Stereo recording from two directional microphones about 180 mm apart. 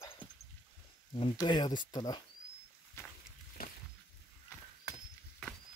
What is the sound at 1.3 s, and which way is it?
Speech, 25° left (ahead or behind).